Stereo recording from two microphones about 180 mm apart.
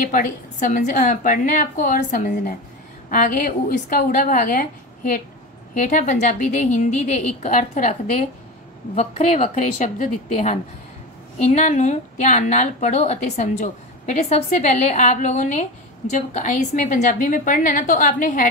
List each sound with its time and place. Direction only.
0.0 s a woman's voice: 50° left (ahead or behind)
8.9 s a woman's voice: 40° left (ahead or behind)